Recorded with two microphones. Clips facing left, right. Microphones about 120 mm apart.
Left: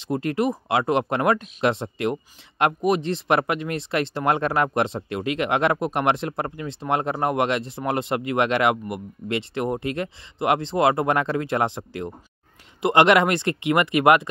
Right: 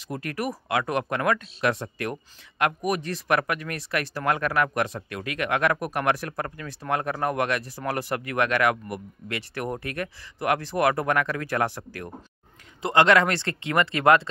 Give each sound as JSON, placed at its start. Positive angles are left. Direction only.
{"t": 0.0, "sound": "speech", "side_deg": 25}